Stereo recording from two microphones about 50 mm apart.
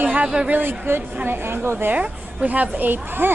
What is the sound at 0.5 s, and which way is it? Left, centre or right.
A woman's voice, right.